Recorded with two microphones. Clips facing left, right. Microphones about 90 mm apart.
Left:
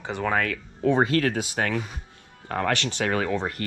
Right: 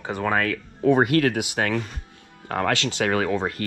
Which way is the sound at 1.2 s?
20° right (ahead or behind).